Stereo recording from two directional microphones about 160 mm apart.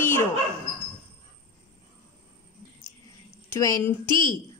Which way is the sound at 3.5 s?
15° left (ahead or behind).